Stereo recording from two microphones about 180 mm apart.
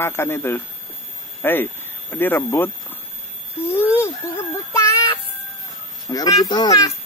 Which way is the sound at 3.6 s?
10° left (ahead or behind).